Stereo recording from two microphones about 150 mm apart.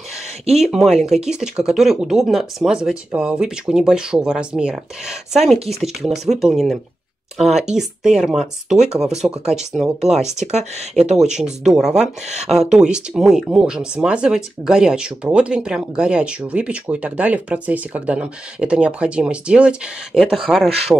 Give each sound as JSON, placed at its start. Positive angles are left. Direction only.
{"t": 0.6, "sound": "speech", "side_deg": -5}
{"t": 10.3, "sound": "speech", "side_deg": -50}
{"t": 11.2, "sound": "speech", "side_deg": -5}